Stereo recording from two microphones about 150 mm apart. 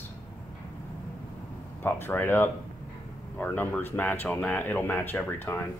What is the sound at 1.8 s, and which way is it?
Speech, 15° left (ahead or behind).